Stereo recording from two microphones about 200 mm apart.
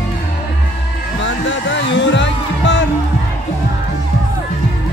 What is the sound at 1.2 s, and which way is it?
Music, 65° left (ahead or behind).